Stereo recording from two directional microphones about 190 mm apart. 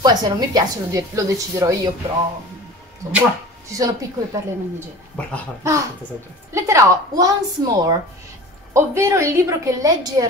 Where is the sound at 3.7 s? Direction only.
20° right (ahead or behind).